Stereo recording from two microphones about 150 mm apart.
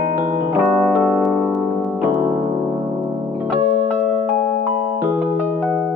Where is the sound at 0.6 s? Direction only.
5° right (ahead or behind).